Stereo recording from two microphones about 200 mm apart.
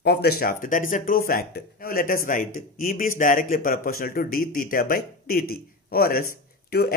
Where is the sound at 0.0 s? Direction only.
55° left (ahead or behind).